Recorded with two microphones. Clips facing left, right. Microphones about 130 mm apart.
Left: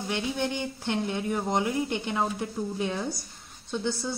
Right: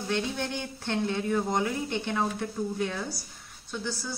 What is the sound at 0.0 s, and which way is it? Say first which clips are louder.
Speech: left 1 dB; 15° left (ahead or behind).